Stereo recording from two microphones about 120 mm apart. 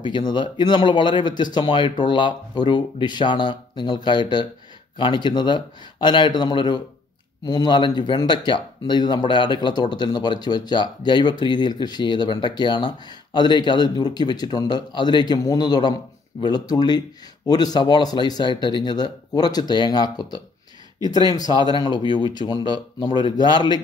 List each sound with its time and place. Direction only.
0.0 s speech: 40° left (ahead or behind)
21.7 s speech: 40° left (ahead or behind)